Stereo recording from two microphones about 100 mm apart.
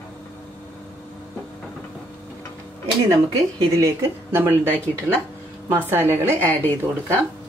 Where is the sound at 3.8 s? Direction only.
25° right (ahead or behind).